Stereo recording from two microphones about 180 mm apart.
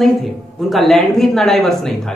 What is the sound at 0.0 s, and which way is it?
Speech, centre (ahead or behind).